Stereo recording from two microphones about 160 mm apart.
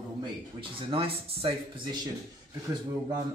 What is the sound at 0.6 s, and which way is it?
Speech, 35° right (ahead or behind).